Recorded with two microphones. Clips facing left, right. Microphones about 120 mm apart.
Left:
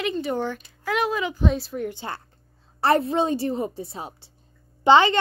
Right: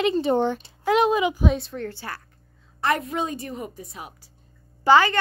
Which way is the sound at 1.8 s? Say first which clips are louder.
Left 2 dB; 20° left (ahead or behind).